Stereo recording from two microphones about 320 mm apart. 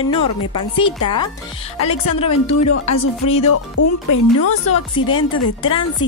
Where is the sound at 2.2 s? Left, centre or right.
Left.